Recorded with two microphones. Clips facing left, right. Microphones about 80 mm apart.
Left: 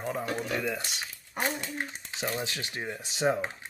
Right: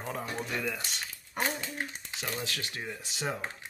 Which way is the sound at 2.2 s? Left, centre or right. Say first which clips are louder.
Left 4 dB; left.